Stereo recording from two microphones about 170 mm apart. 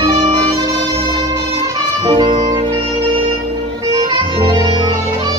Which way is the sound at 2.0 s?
30° right (ahead or behind).